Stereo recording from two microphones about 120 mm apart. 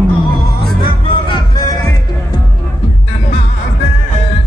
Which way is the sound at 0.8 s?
45° left (ahead or behind).